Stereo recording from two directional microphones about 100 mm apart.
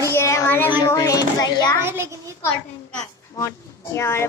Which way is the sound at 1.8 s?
25° right (ahead or behind).